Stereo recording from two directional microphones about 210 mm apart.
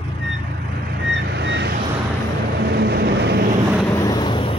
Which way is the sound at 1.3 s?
55° right (ahead or behind).